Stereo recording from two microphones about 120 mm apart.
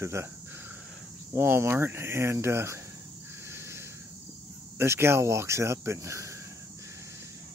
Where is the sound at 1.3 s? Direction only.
20° right (ahead or behind).